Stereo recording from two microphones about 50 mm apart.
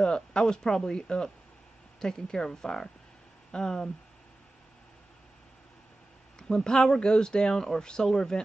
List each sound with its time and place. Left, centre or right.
0.0 s speech: centre
6.5 s speech: centre